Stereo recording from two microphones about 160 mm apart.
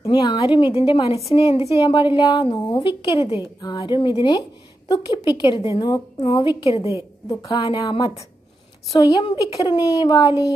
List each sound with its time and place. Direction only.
0.1 s a woman's voice: 25° left (ahead or behind)
8.9 s a woman's voice: 25° left (ahead or behind)